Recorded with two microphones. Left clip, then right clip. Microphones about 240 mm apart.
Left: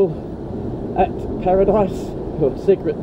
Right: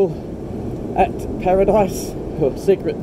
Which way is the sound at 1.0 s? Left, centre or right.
Centre.